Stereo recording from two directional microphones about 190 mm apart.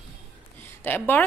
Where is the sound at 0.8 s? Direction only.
10° left (ahead or behind).